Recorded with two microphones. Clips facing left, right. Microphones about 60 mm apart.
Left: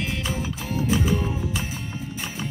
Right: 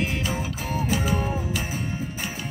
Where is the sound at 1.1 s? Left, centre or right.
Right.